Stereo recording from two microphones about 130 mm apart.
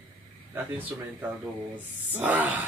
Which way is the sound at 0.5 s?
15° right (ahead or behind).